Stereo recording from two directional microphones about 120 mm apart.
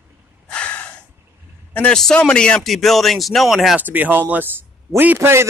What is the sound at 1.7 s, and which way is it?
A man's voice, 5° left (ahead or behind).